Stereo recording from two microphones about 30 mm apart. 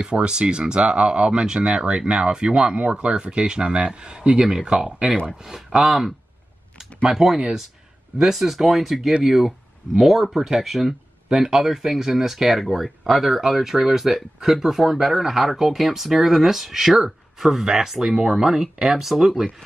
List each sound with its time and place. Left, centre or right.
0.0 s speech: right
5.6 s speech: centre
7.1 s speech: centre